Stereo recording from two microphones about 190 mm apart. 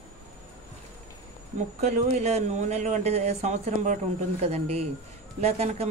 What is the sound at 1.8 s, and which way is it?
A man's voice, 35° right (ahead or behind).